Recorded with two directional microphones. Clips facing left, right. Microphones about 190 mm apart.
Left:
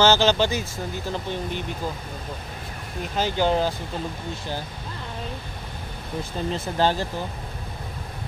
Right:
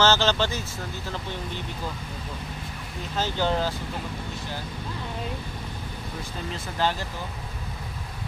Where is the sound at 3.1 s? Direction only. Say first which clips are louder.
Left 4 dB; 15° left (ahead or behind).